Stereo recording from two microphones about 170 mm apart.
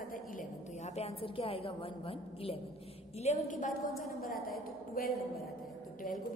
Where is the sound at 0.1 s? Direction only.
45° left (ahead or behind).